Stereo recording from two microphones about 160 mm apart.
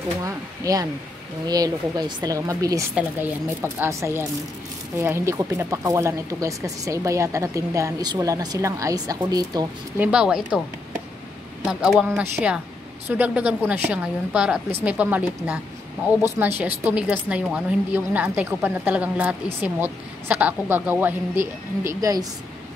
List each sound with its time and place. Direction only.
0.2 s a woman's voice: 20° right (ahead or behind)
9.9 s speech: 10° right (ahead or behind)
11.6 s a woman's voice: 5° right (ahead or behind); by 22.2 s 20° right (ahead or behind)